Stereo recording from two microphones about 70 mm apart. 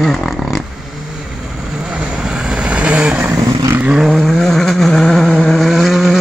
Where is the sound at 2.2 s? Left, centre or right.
Centre.